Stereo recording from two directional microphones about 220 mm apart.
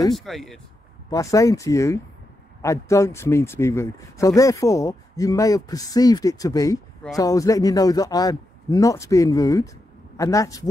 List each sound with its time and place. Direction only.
0.1 s speech: centre (ahead or behind)
1.1 s speech: 15° left (ahead or behind)